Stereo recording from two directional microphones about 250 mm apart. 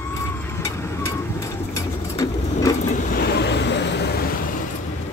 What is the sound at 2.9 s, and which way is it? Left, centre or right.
Vehicle, left.